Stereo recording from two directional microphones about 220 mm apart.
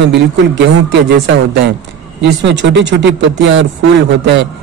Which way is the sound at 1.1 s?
50° right (ahead or behind).